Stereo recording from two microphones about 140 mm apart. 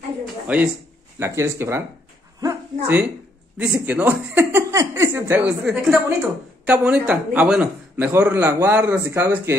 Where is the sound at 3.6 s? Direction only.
10° right (ahead or behind).